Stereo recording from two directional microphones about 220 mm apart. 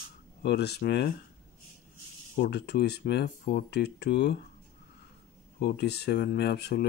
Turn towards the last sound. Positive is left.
turn(degrees=50)  # may be behind; listen again after turning